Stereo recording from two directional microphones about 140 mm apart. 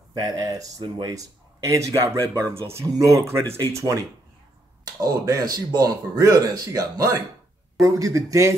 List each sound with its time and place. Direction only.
0.1 s speech: 25° right (ahead or behind)
5.0 s speech: 25° right (ahead or behind)